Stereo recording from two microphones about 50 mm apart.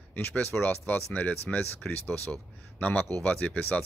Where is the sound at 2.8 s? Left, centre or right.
Left.